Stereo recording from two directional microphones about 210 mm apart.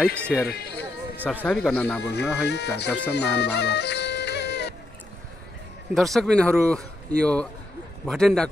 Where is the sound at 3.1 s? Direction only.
50° left (ahead or behind).